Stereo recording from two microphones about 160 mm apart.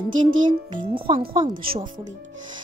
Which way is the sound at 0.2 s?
30° right (ahead or behind).